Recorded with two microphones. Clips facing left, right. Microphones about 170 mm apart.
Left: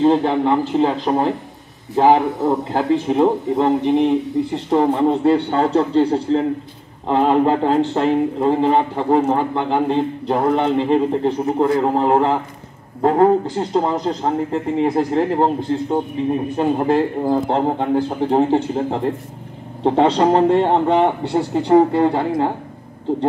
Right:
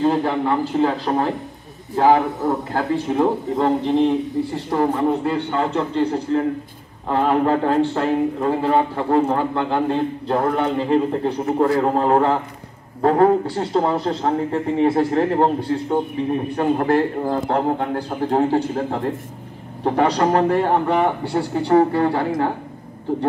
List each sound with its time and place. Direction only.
0.0 s a man's voice: 20° left (ahead or behind)
7.1 s a man's voice: 20° left (ahead or behind)
16.5 s a man's voice: 15° left (ahead or behind)